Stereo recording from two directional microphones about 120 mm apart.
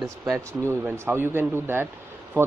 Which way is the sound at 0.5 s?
20° right (ahead or behind).